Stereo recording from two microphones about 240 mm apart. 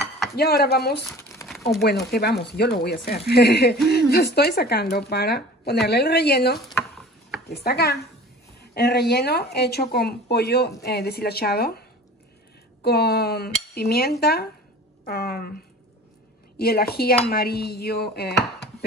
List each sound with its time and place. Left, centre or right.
0.4 s speech: left
6.7 s a sound: centre
7.4 s speech: left
12.8 s speech: left
16.5 s speech: left